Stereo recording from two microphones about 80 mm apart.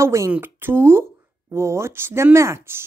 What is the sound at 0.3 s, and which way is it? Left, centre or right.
Speech, right.